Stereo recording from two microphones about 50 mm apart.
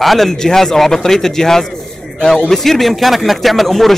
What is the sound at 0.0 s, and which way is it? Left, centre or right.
Speech, centre.